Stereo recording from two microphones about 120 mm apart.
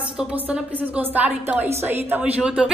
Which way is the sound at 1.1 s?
15° right (ahead or behind).